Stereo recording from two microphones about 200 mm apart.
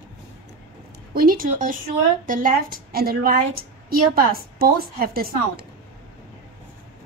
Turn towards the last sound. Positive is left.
turn(degrees=-50)  # may be behind; listen again after turning